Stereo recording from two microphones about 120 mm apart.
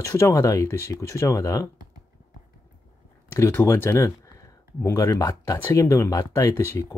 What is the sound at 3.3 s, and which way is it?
Speech, 20° left (ahead or behind).